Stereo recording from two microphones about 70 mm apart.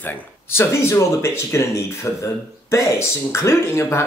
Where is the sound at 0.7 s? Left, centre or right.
Left.